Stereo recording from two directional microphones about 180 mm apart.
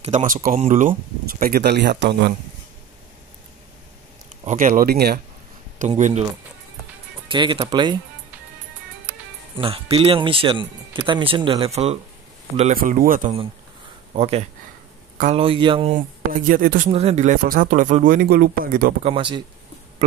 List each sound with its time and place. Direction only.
0.0 s speech: 40° right (ahead or behind); by 2.3 s 70° right (ahead or behind)
4.5 s speech: 45° right (ahead or behind)
5.8 s speech: 45° right (ahead or behind)
7.2 s speech: 25° right (ahead or behind)
9.1 s music: 5° right (ahead or behind)
9.6 s speech: 30° right (ahead or behind)
12.7 s speech: 50° right (ahead or behind)
14.1 s speech: 35° right (ahead or behind)
15.9 s speech: 50° right (ahead or behind)
16.9 s speech: 35° right (ahead or behind); by 18.9 s 55° right (ahead or behind)
19.0 s speech: 30° right (ahead or behind)